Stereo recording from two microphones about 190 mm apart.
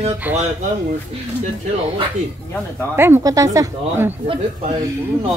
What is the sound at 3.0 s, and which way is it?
Speech, 15° right (ahead or behind).